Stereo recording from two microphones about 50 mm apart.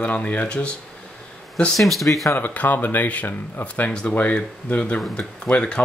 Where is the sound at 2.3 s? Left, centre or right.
Left.